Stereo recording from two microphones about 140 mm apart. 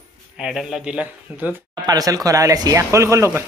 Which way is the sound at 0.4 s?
5° right (ahead or behind).